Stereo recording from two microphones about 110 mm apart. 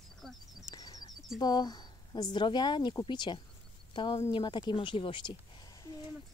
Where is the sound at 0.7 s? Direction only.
35° left (ahead or behind).